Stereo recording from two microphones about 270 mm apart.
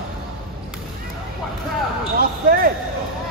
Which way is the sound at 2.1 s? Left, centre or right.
Right.